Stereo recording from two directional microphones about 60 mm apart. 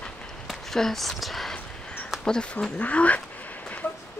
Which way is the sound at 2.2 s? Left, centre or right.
Centre.